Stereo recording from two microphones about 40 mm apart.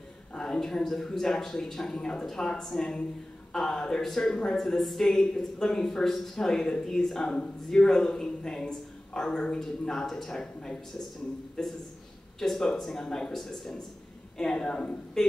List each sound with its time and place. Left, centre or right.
0.4 s speech: centre
2.0 s speech: left
14.4 s speech: left
15.2 s speech: centre